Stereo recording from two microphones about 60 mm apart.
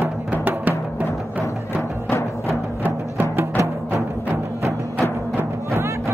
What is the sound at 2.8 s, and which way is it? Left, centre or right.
Music, right.